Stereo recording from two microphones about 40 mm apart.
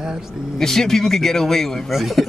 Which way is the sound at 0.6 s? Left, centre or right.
Centre.